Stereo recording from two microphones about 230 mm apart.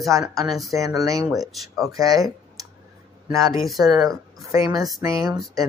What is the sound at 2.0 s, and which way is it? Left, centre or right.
Speech, centre.